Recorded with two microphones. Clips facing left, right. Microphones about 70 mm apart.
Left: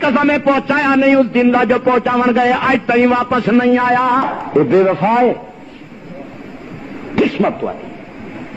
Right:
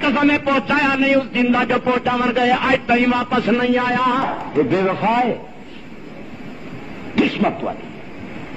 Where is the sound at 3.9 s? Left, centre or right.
Left.